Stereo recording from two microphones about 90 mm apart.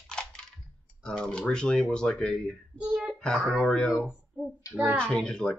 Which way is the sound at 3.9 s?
10° right (ahead or behind).